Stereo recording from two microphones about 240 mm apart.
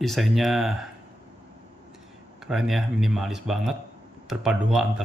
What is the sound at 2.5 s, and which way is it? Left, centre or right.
Speech, centre.